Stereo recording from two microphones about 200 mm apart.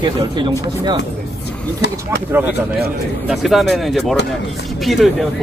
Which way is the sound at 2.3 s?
10° right (ahead or behind).